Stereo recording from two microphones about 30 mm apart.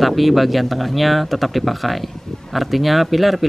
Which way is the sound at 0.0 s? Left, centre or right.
Centre.